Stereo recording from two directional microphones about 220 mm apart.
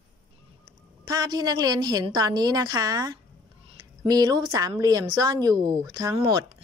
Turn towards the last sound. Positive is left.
turn(degrees=-20)  # may be behind; listen again after turning